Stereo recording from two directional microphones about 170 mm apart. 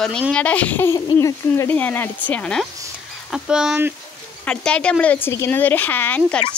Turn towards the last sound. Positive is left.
turn(degrees=10)  # may be behind; listen again after turning